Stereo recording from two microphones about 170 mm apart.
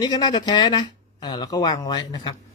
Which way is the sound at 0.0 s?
25° left (ahead or behind).